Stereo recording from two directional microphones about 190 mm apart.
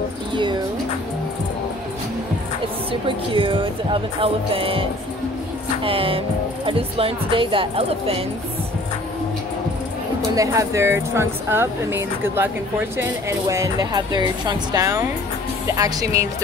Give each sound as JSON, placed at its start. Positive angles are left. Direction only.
{"t": 0.3, "sound": "a sound", "side_deg": -25}
{"t": 2.9, "sound": "speech", "side_deg": -25}
{"t": 5.9, "sound": "speech", "side_deg": -30}
{"t": 10.3, "sound": "speech", "side_deg": -15}